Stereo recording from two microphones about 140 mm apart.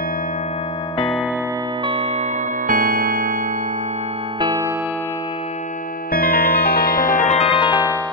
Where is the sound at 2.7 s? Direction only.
90° right.